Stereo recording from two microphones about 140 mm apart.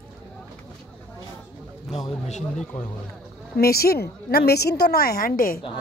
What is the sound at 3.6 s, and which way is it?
Speech, 90° left.